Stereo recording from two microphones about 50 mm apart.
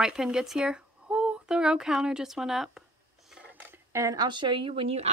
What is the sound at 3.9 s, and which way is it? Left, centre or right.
Speech, right.